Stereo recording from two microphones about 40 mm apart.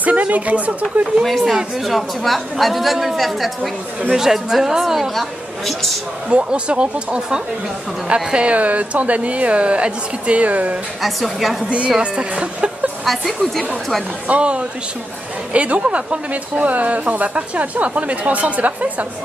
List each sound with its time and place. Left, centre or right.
0.0 s speech: right
1.2 s a woman's voice: centre
4.1 s speech: centre
6.2 s speech: right
8.5 s speech: right
11.0 s a woman's voice: centre
12.0 s speech: right
13.0 s a woman's voice: centre
14.2 s speech: right